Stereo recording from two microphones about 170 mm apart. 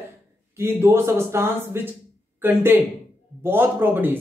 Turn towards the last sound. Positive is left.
turn(degrees=-10)  # may be behind; listen again after turning